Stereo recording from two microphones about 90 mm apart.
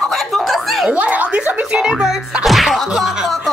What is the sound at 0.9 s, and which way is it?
A woman's voice, 15° right (ahead or behind).